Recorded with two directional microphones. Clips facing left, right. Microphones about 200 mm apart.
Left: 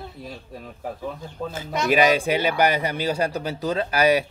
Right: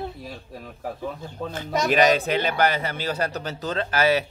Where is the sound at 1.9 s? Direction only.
10° left (ahead or behind).